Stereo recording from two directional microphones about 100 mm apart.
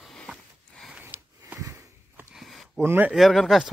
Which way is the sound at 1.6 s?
30° right (ahead or behind).